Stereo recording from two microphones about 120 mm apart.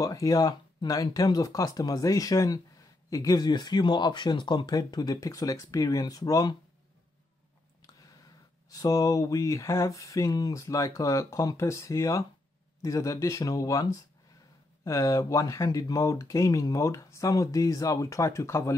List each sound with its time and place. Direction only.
0.0 s speech: 30° left (ahead or behind)
8.7 s speech: 30° left (ahead or behind)